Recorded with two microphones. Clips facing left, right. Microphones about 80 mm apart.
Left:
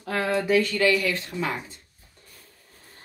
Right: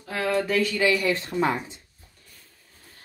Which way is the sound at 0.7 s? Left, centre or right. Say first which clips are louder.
Even; right.